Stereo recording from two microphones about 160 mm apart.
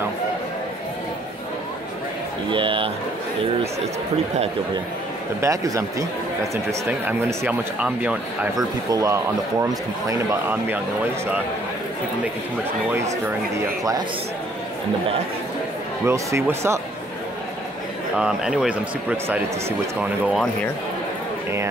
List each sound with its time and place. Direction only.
2.5 s speech: 30° right (ahead or behind)
5.4 s speech: 20° right (ahead or behind)
6.9 s speech: 10° right (ahead or behind)
8.5 s speech: 20° right (ahead or behind)
16.1 s speech: 15° right (ahead or behind)
18.1 s speech: 5° right (ahead or behind)